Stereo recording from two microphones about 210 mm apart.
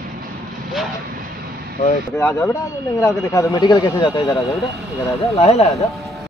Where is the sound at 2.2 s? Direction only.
10° left (ahead or behind).